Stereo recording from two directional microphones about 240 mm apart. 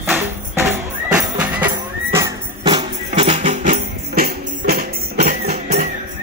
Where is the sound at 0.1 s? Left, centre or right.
Centre.